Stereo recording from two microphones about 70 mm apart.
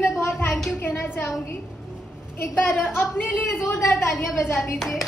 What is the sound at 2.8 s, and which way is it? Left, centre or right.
Speech, left.